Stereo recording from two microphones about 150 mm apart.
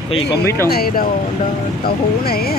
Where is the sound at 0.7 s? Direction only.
80° left.